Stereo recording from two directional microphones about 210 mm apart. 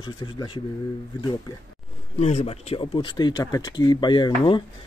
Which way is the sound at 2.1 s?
30° left (ahead or behind).